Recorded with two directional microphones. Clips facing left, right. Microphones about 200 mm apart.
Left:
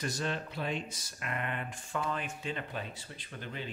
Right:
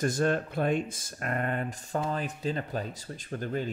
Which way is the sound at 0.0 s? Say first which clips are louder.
Right 9 dB; 50° right (ahead or behind).